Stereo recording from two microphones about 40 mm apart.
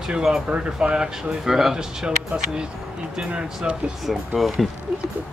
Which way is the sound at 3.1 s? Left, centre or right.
Right.